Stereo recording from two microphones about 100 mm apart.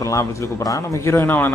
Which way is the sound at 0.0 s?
35° left (ahead or behind).